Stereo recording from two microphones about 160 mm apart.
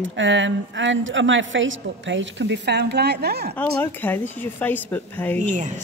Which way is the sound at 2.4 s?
90° right.